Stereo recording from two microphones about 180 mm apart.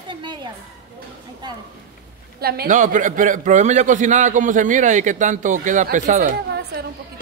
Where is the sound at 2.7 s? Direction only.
45° right (ahead or behind).